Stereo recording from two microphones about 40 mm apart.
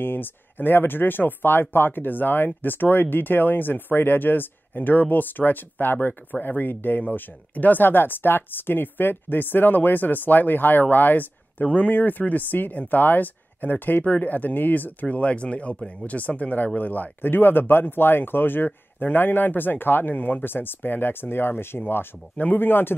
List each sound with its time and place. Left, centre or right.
0.0 s speech: left